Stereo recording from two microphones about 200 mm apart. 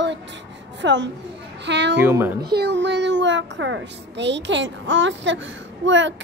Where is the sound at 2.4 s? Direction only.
55° right (ahead or behind).